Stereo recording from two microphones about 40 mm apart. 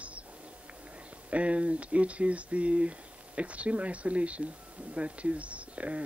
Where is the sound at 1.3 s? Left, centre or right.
Right.